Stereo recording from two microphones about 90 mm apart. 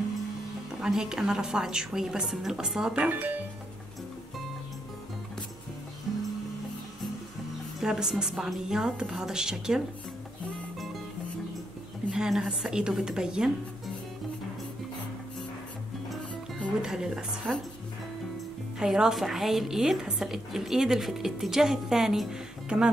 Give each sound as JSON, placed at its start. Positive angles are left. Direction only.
{"t": 0.7, "sound": "a woman's voice", "side_deg": -5}
{"t": 3.0, "sound": "speech", "side_deg": -20}
{"t": 6.1, "sound": "music", "side_deg": -5}
{"t": 7.8, "sound": "a woman's voice", "side_deg": -5}
{"t": 12.1, "sound": "a woman's voice", "side_deg": -5}
{"t": 16.8, "sound": "a woman's voice", "side_deg": -5}
{"t": 18.8, "sound": "a woman's voice", "side_deg": -5}